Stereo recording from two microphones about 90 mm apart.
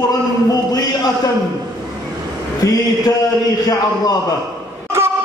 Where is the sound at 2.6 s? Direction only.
45° left (ahead or behind).